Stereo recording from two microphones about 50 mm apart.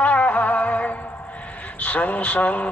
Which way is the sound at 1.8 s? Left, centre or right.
Left.